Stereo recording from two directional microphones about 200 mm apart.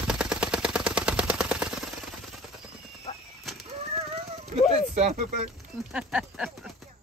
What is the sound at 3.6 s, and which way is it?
Clip-clop, 30° right (ahead or behind).